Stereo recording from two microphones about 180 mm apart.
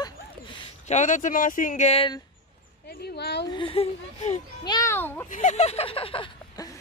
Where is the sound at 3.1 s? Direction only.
70° left (ahead or behind).